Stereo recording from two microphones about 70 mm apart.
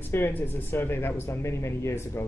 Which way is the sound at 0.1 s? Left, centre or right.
Left.